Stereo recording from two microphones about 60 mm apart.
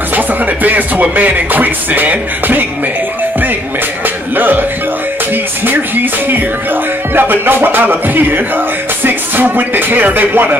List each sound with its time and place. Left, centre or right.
0.1 s music: right
4.4 s music: right
5.7 s music: right